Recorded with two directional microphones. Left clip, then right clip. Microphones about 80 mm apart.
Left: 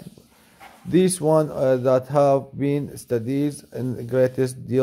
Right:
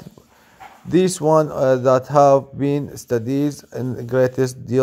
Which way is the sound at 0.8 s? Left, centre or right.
Right.